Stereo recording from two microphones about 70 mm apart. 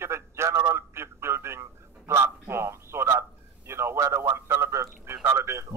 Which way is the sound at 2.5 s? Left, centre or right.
Right.